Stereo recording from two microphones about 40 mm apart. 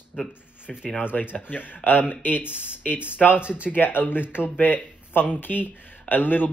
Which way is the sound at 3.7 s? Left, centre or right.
Left.